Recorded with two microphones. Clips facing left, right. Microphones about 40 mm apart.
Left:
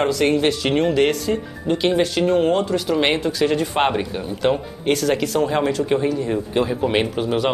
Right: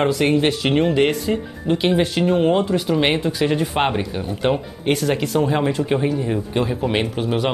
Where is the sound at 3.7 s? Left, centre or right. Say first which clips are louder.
Left 1 dB; centre.